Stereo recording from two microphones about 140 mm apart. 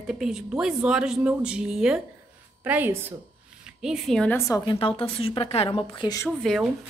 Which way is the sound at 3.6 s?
5° right (ahead or behind).